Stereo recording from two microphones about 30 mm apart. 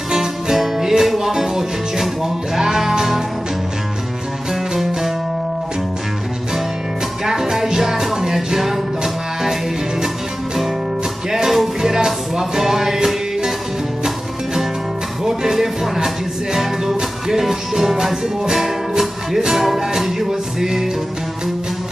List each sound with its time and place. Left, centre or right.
0.1 s music: centre
7.2 s music: centre
11.4 s music: centre
17.3 s music: centre